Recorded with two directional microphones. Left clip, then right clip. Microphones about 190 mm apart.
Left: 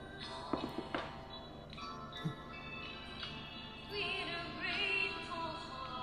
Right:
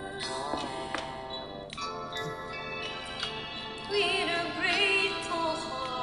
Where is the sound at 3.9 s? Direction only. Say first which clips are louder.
Right 12 dB; 40° right (ahead or behind).